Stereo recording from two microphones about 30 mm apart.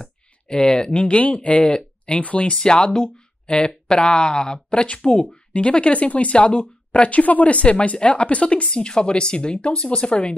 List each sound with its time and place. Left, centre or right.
0.0 s speech: left
3.9 s speech: left
5.5 s speech: left
8.6 s speech: left